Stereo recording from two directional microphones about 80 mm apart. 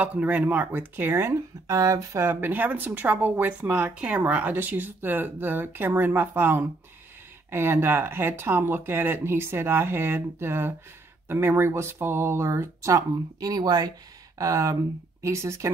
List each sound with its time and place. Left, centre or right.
0.0 s speech: centre
1.3 s speech: right
14.4 s speech: right